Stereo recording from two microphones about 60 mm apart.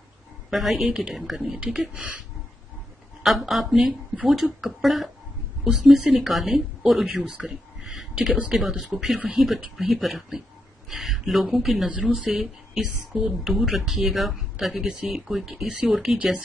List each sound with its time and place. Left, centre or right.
0.5 s speech: centre
3.2 s a woman's voice: centre
5.6 s speech: centre
6.0 s speech: centre
7.4 s a sound: centre
8.3 s speech: centre
8.5 s a woman's voice: centre
11.9 s speech: right
12.3 s a woman's voice: centre
16.2 s speech: centre